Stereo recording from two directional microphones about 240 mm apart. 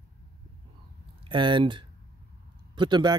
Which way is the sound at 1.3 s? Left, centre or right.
Centre.